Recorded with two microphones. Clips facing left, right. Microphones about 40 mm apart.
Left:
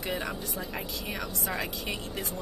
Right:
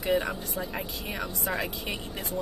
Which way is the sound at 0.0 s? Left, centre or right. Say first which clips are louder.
Right 6 dB; centre.